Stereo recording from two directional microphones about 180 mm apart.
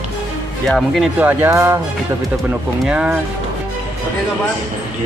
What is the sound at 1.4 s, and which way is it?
Speech, 15° right (ahead or behind).